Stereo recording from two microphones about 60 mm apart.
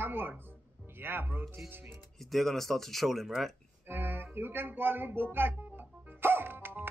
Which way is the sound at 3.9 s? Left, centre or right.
Right.